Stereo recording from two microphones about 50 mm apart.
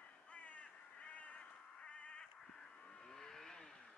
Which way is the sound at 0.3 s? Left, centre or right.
Left.